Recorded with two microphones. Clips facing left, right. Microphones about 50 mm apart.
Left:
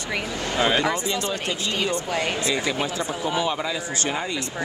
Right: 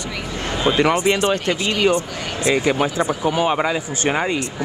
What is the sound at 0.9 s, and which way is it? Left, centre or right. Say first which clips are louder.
Speech: right 8 dB; right.